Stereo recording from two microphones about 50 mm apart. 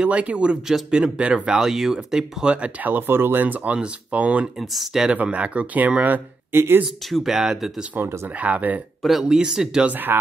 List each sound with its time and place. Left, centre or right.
0.0 s speech: right
2.5 s speech: right
2.9 s speech: right
3.7 s speech: right
4.6 s speech: centre
5.1 s speech: right
6.5 s speech: right
7.1 s speech: centre
8.4 s speech: right
9.2 s speech: centre
9.8 s speech: right